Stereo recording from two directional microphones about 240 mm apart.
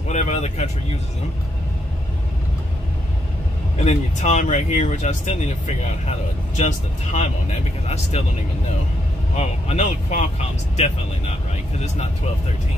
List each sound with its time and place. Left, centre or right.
0.1 s speech: left
3.8 s speech: left
9.3 s speech: left